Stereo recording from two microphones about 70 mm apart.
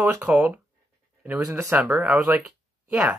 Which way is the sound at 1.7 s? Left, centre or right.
Centre.